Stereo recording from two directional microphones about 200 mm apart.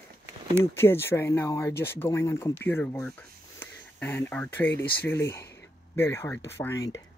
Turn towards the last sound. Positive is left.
turn(degrees=15)  # may be behind; listen again after turning